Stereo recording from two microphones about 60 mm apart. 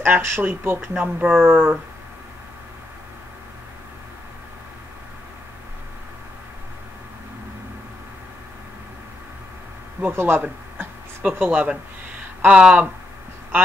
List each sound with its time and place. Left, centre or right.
0.0 s speech: right
10.1 s speech: right
12.4 s speech: centre